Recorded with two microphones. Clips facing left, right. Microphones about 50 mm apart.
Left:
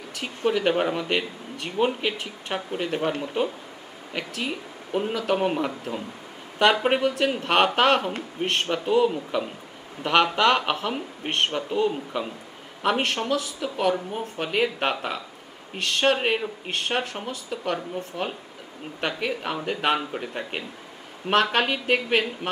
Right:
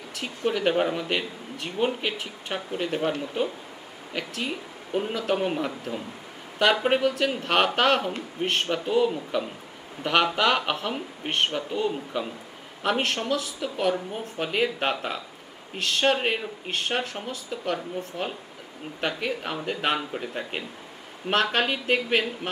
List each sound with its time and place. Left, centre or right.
0.5 s speech: centre
4.1 s speech: centre